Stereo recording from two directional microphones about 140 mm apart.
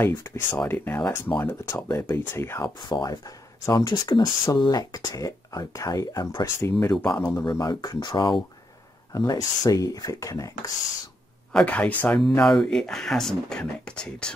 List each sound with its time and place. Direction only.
0.0 s speech: 15° left (ahead or behind)
2.8 s speech: 30° left (ahead or behind)
11.5 s speech: 10° left (ahead or behind)